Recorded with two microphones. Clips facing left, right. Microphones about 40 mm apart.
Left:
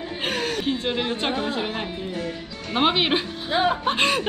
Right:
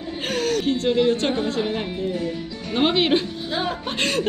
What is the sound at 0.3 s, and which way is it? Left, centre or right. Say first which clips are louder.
Speech: right 4 dB; centre.